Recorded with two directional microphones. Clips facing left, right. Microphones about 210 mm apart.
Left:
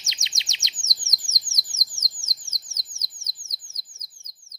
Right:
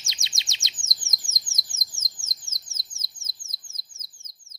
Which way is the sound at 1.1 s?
20° left (ahead or behind).